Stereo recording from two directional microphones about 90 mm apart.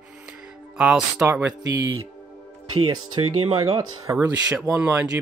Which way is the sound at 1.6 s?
40° right (ahead or behind).